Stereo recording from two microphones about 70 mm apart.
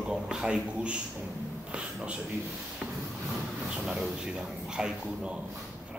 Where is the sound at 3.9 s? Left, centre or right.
Centre.